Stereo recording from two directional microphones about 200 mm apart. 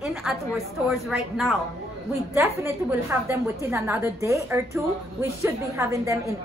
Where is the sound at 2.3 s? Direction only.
15° right (ahead or behind).